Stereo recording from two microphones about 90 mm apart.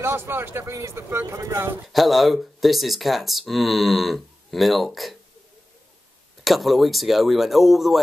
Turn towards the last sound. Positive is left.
turn(degrees=0)  # may be behind; listen again after turning